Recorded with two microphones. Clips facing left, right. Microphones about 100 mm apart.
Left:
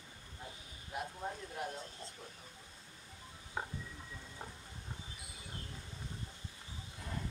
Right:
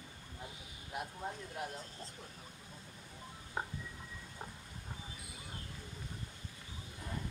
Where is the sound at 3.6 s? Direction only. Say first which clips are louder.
Right 1 dB; 5° right (ahead or behind).